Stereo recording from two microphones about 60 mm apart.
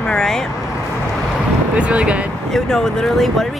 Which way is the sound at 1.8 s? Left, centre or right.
Right.